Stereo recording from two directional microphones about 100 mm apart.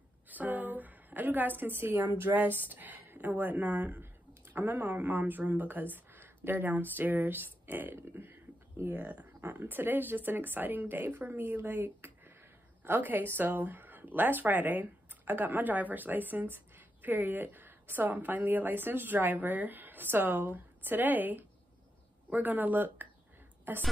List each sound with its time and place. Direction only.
0.3 s a woman's voice: 15° right (ahead or behind)